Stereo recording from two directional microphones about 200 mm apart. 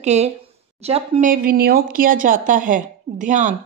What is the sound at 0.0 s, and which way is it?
A woman's voice, 35° right (ahead or behind).